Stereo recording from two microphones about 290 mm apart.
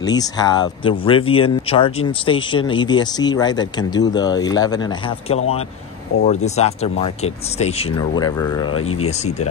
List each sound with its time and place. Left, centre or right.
0.0 s speech: centre